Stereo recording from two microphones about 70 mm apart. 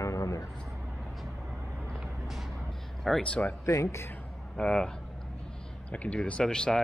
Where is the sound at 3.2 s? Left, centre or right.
Centre.